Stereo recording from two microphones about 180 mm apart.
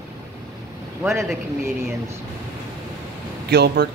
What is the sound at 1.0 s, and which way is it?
Speech, 15° right (ahead or behind).